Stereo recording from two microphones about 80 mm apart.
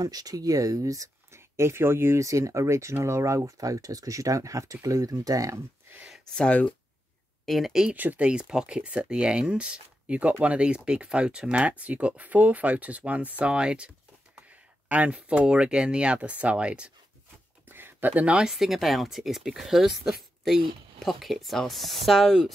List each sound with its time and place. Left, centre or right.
0.0 s speech: right
5.9 s a sound: right
6.3 s speech: centre
7.4 s speech: centre
7.9 s speech: right
17.6 s a sound: right
18.5 s speech: centre